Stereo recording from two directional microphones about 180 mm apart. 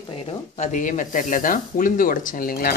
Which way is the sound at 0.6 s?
45° left (ahead or behind).